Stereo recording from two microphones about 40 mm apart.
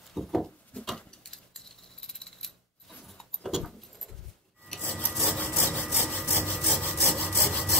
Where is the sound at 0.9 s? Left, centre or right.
Centre.